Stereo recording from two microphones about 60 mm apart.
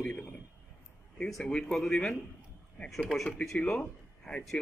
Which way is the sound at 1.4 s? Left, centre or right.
Centre.